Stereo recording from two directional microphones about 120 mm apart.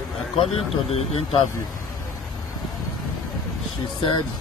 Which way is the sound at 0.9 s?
55° left (ahead or behind).